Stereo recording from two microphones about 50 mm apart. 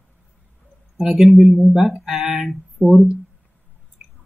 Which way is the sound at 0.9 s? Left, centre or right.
Centre.